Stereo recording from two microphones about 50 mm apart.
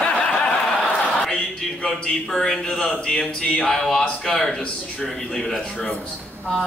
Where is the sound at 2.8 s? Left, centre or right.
Centre.